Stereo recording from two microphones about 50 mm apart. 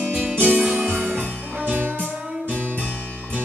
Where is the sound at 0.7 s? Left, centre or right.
Right.